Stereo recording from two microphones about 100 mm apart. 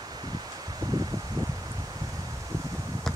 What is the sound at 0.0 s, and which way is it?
Rustling leaves, 45° right (ahead or behind).